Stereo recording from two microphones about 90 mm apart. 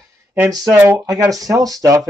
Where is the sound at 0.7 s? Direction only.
30° right (ahead or behind).